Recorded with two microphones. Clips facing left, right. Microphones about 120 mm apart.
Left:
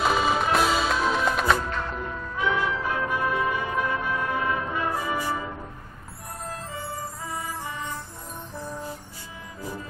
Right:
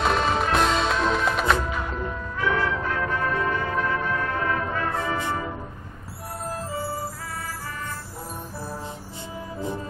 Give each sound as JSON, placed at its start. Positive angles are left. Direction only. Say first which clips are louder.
{"t": 0.0, "sound": "music", "louder": "even", "side_deg": 5}
{"t": 2.3, "sound": "music", "louder": "right 1 dB", "side_deg": 15}